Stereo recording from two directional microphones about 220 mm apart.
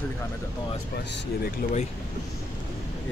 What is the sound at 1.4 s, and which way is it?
Speech, 40° left (ahead or behind).